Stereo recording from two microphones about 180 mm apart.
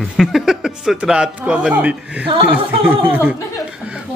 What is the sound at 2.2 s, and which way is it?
Speech, 30° right (ahead or behind).